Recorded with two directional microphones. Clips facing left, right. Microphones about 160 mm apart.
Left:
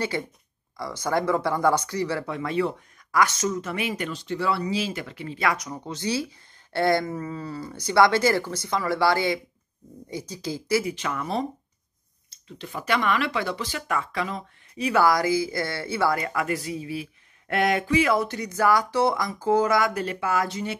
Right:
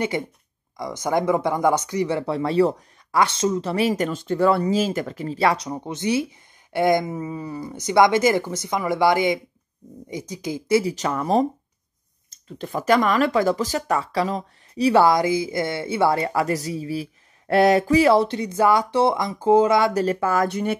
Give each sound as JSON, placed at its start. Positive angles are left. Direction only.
{"t": 0.1, "sound": "speech", "side_deg": -20}
{"t": 2.2, "sound": "speech", "side_deg": -35}
{"t": 10.8, "sound": "speech", "side_deg": -35}
{"t": 12.4, "sound": "speech", "side_deg": -45}
{"t": 19.9, "sound": "speech", "side_deg": -40}